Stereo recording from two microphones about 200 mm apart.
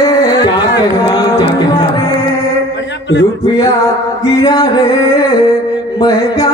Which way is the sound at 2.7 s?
65° left (ahead or behind).